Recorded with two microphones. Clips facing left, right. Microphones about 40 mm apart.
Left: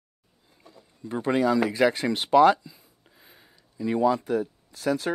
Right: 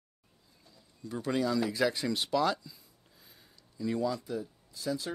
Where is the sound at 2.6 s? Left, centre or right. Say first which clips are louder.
Left 4 dB; left.